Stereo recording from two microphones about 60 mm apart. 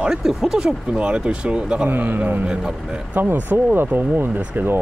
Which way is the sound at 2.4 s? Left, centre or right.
Centre.